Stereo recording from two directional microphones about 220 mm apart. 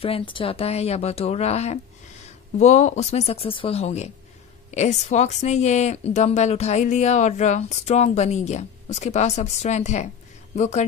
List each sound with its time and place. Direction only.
0.0 s a woman's voice: 25° left (ahead or behind)